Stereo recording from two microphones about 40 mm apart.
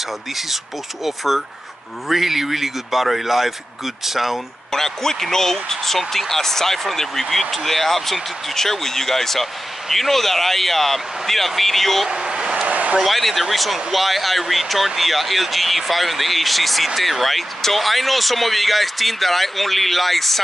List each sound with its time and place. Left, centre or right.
1.0 s speech: centre
4.7 s speech: centre
12.1 s vehicle: centre
12.6 s a sound: right
13.0 s speech: centre